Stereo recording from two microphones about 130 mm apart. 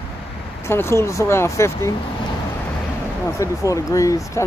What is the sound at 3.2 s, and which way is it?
Speech, 25° left (ahead or behind).